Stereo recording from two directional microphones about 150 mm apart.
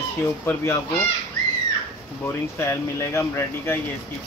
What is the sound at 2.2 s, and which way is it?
Speech, 15° left (ahead or behind).